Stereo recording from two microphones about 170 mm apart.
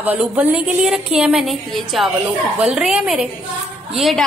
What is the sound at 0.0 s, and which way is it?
A woman's voice, 10° right (ahead or behind).